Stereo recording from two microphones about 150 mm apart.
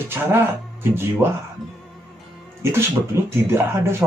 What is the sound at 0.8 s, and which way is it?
Speech, 15° right (ahead or behind).